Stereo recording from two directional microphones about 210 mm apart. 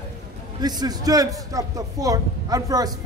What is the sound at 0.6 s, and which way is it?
A man's voice, 20° right (ahead or behind).